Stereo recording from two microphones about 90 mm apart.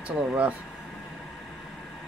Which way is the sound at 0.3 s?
15° right (ahead or behind).